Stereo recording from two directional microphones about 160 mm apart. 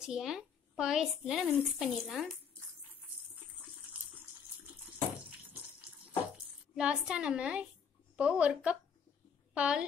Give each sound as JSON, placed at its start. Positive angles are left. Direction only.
{"t": 0.0, "sound": "a woman's voice", "side_deg": -5}
{"t": 3.9, "sound": "bathtub", "side_deg": -30}
{"t": 6.3, "sound": "speech", "side_deg": -5}